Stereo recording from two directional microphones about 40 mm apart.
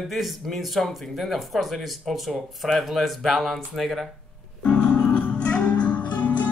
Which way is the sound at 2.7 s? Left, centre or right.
Centre.